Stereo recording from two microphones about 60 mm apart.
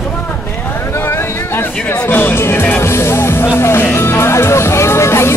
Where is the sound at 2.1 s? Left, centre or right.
Left.